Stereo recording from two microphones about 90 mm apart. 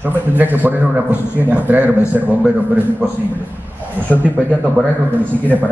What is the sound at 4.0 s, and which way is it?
Speech, 20° right (ahead or behind).